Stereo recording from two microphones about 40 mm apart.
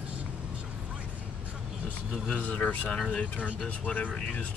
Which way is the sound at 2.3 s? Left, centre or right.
Left.